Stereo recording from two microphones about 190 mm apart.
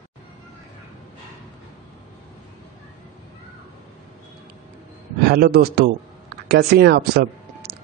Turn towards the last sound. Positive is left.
turn(degrees=-55)  # may be behind; listen again after turning